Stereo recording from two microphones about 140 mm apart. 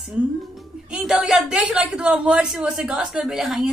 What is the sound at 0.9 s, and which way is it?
A woman's voice, 10° right (ahead or behind).